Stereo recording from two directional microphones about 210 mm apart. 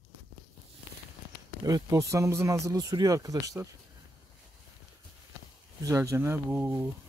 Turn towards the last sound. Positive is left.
turn(degrees=-10)  # may be behind; listen again after turning